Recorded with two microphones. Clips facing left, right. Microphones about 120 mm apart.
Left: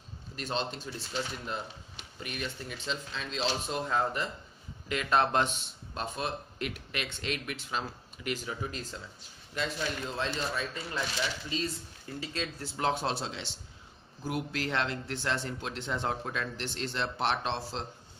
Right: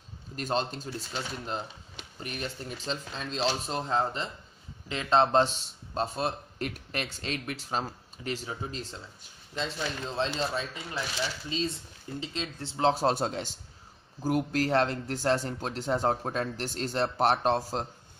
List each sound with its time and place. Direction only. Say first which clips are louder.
0.4 s speech: right 4 dB; 40° right (ahead or behind); by 12.9 s 25° right (ahead or behind)
12.9 s speech: right 6 dB; 45° right (ahead or behind)